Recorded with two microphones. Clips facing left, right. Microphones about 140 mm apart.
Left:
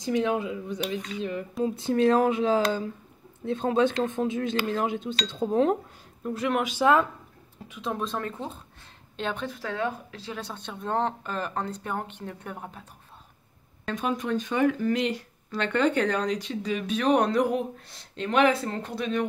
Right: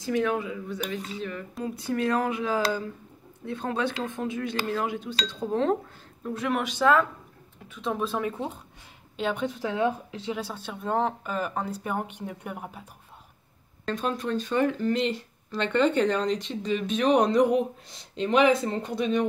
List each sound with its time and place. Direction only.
0.0 s speech: 20° left (ahead or behind)
6.2 s speech: centre (ahead or behind)
6.8 s speech: 20° left (ahead or behind)
7.8 s a woman's voice: 5° right (ahead or behind); by 10.4 s 20° right (ahead or behind)
10.4 s speech: 5° right (ahead or behind)
13.8 s speech: 15° left (ahead or behind); by 19.2 s centre (ahead or behind)